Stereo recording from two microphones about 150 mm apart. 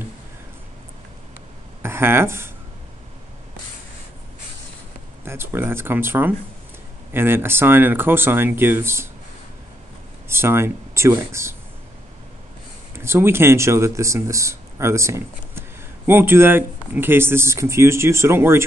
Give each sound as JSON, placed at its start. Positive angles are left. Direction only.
{"t": 1.8, "sound": "speech", "side_deg": -15}
{"t": 5.2, "sound": "speech", "side_deg": -15}
{"t": 10.2, "sound": "speech", "side_deg": -15}
{"t": 12.9, "sound": "speech", "side_deg": -15}